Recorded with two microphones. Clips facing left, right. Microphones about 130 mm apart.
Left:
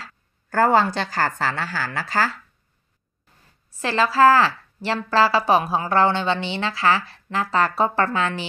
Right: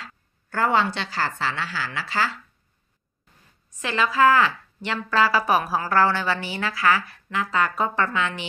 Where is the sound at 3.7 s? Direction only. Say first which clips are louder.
Left 3 dB; 35° left (ahead or behind).